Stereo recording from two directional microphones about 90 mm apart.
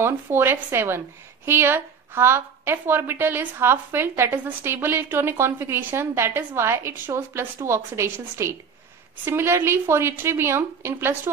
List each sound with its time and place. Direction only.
0.0 s a woman's voice: 25° right (ahead or behind)